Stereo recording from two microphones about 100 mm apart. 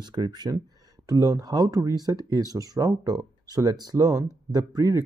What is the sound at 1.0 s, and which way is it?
Speech, 30° right (ahead or behind).